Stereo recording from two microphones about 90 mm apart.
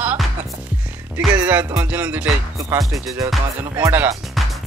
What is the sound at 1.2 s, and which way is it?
Music, 15° right (ahead or behind).